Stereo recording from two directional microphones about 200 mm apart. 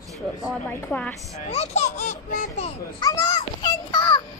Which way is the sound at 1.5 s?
35° left (ahead or behind).